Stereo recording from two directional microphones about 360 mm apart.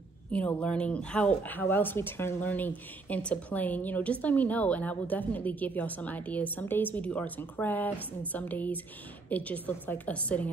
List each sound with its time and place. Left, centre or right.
0.3 s a woman's voice: centre